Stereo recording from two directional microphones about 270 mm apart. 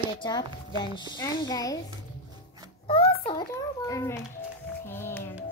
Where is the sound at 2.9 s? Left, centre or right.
Left.